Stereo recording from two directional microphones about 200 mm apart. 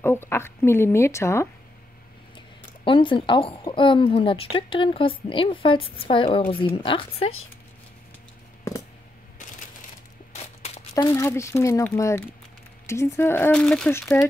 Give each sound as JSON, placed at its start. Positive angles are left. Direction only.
{"t": 0.0, "sound": "speech", "side_deg": 10}
{"t": 2.3, "sound": "a woman's voice", "side_deg": 25}
{"t": 10.3, "sound": "a sound", "side_deg": 30}
{"t": 11.1, "sound": "speech", "side_deg": 15}